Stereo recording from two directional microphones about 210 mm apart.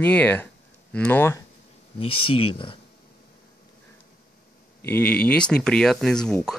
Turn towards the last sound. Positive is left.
turn(degrees=5)  # may be behind; listen again after turning